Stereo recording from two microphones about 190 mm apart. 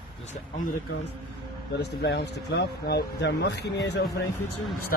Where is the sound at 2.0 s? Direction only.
65° left (ahead or behind).